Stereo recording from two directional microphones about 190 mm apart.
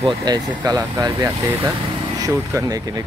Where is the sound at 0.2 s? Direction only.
20° right (ahead or behind).